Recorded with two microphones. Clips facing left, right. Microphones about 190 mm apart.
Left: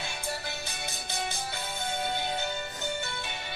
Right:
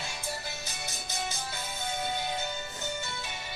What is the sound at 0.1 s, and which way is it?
Music, 60° left (ahead or behind).